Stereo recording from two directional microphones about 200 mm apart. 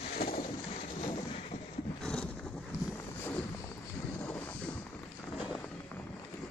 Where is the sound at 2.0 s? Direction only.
5° left (ahead or behind).